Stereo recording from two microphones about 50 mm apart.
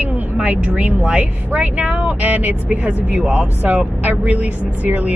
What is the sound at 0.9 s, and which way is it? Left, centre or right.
Speech, right.